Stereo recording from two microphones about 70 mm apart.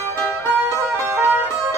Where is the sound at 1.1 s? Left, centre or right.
Right.